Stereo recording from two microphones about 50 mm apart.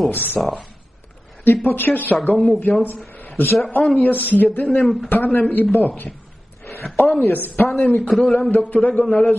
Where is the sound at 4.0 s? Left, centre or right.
Left.